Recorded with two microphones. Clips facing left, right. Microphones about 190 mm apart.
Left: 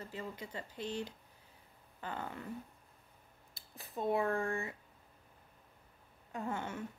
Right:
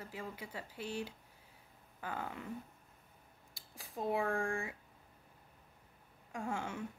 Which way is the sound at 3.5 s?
80° right.